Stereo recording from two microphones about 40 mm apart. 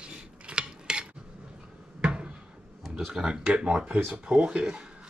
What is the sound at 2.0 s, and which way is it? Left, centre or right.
Cupboard open or close, right.